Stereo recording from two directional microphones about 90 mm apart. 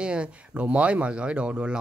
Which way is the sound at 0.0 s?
10° right (ahead or behind).